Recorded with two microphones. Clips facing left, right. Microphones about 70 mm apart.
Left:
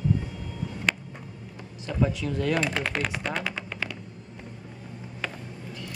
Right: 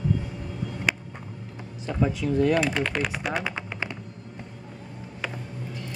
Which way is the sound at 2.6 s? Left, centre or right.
Centre.